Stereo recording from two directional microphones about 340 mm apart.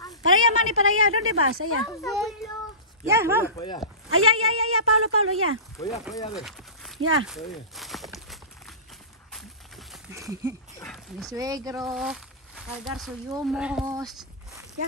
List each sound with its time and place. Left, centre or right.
0.2 s a woman's voice: right
2.0 s a child's voice: centre
3.6 s speech: centre
4.1 s speech: right
6.3 s a sound: centre
7.0 s speech: right
7.2 s walk: centre
9.3 s a sound: centre
10.8 s speech: centre